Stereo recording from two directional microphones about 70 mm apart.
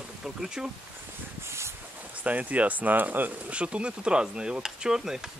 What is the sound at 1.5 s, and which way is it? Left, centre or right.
Wind, right.